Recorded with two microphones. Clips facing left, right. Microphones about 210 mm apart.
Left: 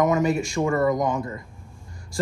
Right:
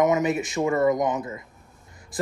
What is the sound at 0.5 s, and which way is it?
Speech, 20° right (ahead or behind).